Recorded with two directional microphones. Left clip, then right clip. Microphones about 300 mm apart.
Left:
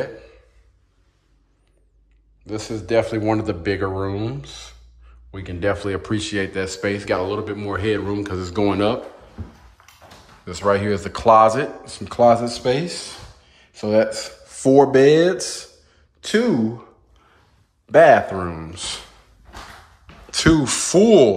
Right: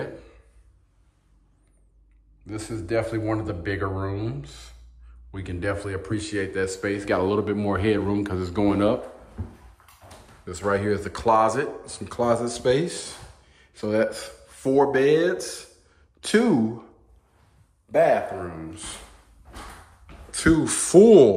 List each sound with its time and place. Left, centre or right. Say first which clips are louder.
0.0 s a sound: left 6 dB; centre
2.4 s speech: left 6 dB; centre
9.8 s clip-clop: left 4 dB; centre
10.4 s speech: left 5 dB; centre
17.9 s a man's voice: left 8 dB; left
18.4 s speech: left 7 dB; centre
20.2 s speech: left 4 dB; centre